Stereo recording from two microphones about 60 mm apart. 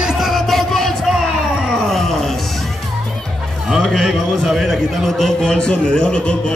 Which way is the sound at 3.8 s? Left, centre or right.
Centre.